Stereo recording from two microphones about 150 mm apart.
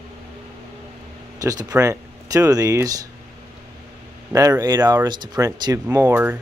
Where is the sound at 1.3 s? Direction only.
25° right (ahead or behind).